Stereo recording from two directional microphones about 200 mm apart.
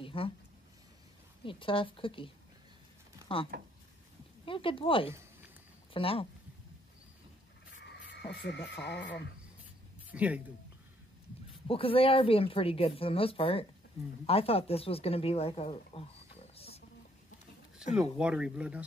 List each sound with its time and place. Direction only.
0.0 s a sound: 25° left (ahead or behind)
1.4 s speech: 25° left (ahead or behind)
3.5 s speech: 50° right (ahead or behind)
4.5 s speech: 25° left (ahead or behind)
7.8 s a sound: 55° left (ahead or behind)
8.8 s speech: 60° left (ahead or behind)
10.1 s speech: 5° right (ahead or behind)
11.6 s speech: 25° left (ahead or behind)
17.8 s speech: 5° right (ahead or behind)